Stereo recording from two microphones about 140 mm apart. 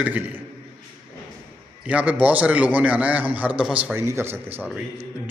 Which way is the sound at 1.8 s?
10° right (ahead or behind).